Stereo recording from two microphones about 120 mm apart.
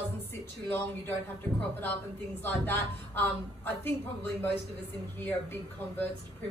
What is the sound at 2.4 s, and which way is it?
A woman's voice, 15° left (ahead or behind).